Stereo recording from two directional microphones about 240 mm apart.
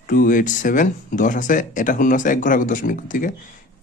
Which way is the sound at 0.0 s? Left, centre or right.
Left.